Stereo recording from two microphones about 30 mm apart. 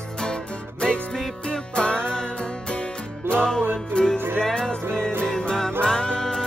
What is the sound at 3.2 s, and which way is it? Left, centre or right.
Music, left.